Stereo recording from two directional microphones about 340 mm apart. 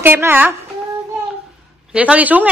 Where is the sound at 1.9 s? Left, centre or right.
Centre.